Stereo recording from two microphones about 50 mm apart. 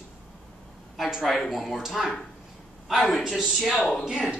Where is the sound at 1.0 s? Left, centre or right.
Centre.